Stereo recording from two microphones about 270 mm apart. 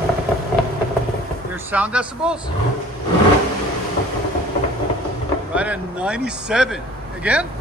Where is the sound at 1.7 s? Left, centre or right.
Centre.